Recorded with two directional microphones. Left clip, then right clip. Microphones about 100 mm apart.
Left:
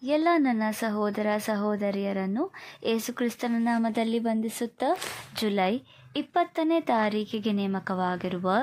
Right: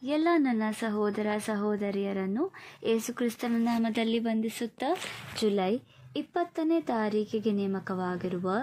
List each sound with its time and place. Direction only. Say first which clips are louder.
0.0 s a woman's voice: left 3 dB; 30° left (ahead or behind)